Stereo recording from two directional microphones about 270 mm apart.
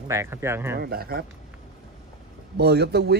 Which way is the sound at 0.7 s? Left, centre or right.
Right.